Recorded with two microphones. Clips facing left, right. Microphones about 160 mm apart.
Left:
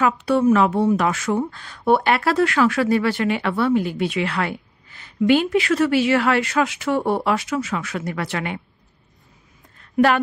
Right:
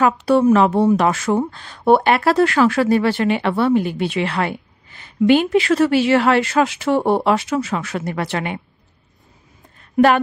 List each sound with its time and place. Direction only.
0.0 s speech: 35° right (ahead or behind)